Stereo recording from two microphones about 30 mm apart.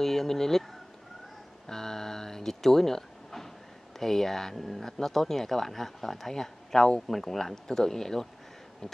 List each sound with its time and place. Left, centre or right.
0.0 s speech: centre
1.7 s a sound: centre
4.0 s speech: centre